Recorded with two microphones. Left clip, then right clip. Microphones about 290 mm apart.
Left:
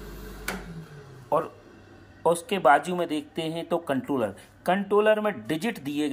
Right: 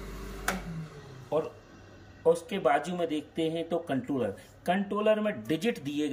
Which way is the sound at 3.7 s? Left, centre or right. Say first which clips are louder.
Left 4 dB; left.